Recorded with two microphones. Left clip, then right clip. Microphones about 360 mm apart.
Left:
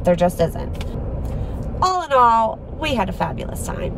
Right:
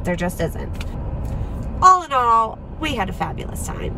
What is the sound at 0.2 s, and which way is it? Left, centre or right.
Speech, left.